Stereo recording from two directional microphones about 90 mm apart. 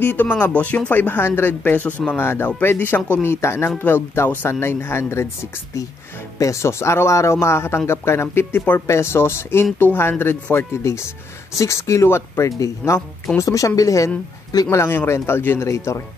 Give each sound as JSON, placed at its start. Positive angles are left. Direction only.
{"t": 0.0, "sound": "speech", "side_deg": 20}
{"t": 2.1, "sound": "speech", "side_deg": 25}
{"t": 14.8, "sound": "speech", "side_deg": 25}